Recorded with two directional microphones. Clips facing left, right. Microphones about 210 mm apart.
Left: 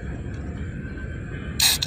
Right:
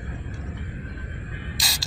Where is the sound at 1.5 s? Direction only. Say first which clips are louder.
Left 2 dB; centre (ahead or behind).